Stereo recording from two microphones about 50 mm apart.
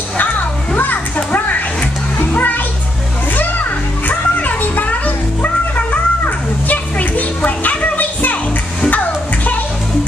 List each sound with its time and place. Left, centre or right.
0.7 s children playing: left
2.1 s music: left
4.1 s music: left